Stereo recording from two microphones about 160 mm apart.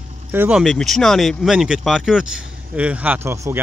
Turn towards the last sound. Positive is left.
turn(degrees=-15)  # may be behind; listen again after turning